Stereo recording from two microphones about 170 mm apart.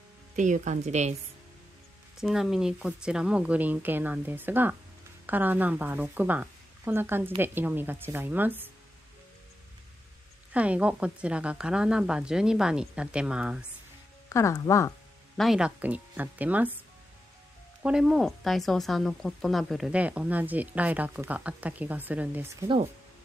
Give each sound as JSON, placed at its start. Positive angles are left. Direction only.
{"t": 0.4, "sound": "speech", "side_deg": -45}
{"t": 2.1, "sound": "speech", "side_deg": 0}
{"t": 10.5, "sound": "a woman's voice", "side_deg": -5}
{"t": 14.3, "sound": "speech", "side_deg": 20}
{"t": 15.3, "sound": "speech", "side_deg": 0}
{"t": 17.8, "sound": "speech", "side_deg": -5}